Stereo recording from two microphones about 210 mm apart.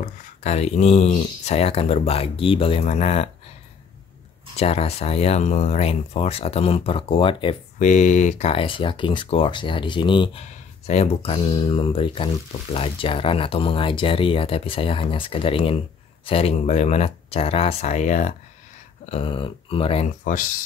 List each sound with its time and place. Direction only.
0.0 s speech: 30° left (ahead or behind)
4.6 s speech: 30° left (ahead or behind)
7.8 s speech: 35° left (ahead or behind)